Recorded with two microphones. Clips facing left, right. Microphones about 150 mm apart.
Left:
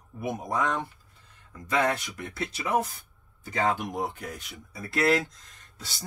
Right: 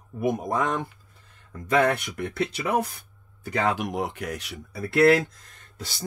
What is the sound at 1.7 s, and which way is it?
Speech, 60° right (ahead or behind).